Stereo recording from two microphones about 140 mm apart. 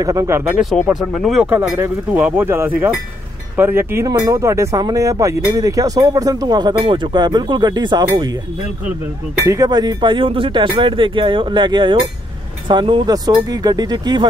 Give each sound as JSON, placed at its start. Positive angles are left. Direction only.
{"t": 0.0, "sound": "speech", "side_deg": -25}
{"t": 0.8, "sound": "speech", "side_deg": 0}
{"t": 1.5, "sound": "speech", "side_deg": -15}
{"t": 9.4, "sound": "speech", "side_deg": -25}